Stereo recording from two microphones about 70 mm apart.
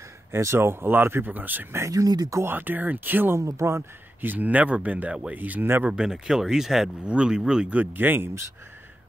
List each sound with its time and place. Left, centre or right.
0.3 s speech: right
1.8 s speech: right
2.4 s speech: right
3.3 s speech: right
4.2 s speech: right
5.9 s speech: centre; by 8.3 s right